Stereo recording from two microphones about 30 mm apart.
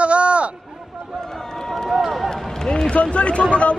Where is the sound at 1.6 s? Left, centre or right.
Centre.